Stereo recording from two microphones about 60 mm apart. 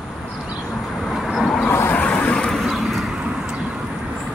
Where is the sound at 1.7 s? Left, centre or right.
Left; by 2.5 s centre.